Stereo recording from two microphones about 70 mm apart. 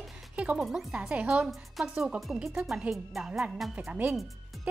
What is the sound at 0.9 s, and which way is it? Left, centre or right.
Speech, centre.